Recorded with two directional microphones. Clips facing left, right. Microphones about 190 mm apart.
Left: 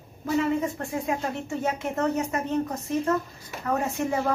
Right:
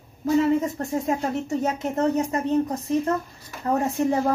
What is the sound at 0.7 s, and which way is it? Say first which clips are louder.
Speech: right 4 dB; 40° right (ahead or behind).